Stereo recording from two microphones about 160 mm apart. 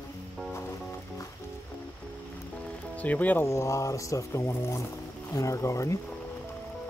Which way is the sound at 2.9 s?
10° left (ahead or behind).